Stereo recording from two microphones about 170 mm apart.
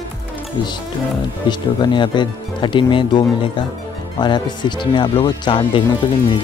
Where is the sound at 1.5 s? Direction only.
25° left (ahead or behind).